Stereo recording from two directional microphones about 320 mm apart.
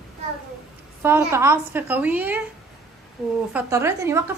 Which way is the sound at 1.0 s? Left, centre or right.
Centre.